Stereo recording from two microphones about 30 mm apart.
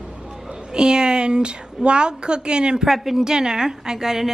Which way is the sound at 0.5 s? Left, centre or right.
Right.